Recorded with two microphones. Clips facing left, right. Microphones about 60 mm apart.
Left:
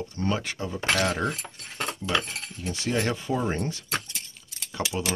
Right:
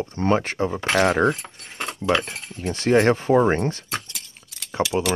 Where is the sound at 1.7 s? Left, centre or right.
Centre.